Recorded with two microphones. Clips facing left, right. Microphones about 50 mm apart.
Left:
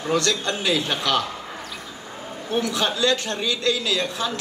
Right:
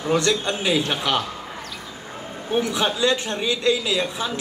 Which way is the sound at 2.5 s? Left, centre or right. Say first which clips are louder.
Right 1 dB; centre.